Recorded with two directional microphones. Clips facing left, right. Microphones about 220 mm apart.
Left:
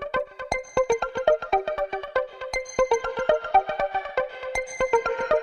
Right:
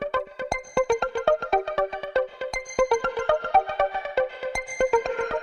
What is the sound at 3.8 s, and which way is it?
Music, centre (ahead or behind).